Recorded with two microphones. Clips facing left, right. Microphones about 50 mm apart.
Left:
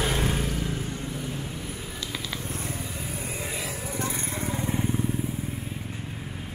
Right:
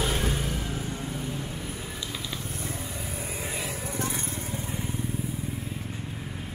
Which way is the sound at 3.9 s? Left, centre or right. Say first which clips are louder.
Left 2 dB; left.